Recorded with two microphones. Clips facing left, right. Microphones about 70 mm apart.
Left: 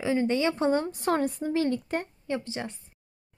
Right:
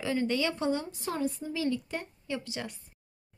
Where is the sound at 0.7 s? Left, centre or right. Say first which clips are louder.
Left 7 dB; left.